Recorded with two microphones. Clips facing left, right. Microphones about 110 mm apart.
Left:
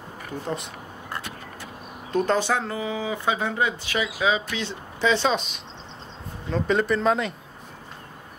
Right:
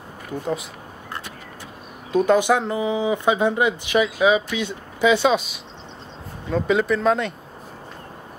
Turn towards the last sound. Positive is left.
turn(degrees=0)  # may be behind; listen again after turning